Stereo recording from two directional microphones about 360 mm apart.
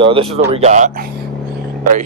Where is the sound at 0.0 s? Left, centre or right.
Centre.